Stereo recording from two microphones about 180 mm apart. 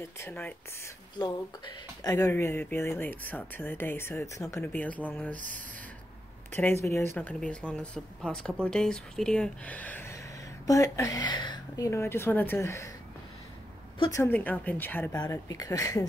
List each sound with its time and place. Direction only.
0.2 s speech: 10° left (ahead or behind)
1.2 s speech: 20° left (ahead or behind)
6.5 s speech: 10° left (ahead or behind)
14.1 s speech: 10° left (ahead or behind)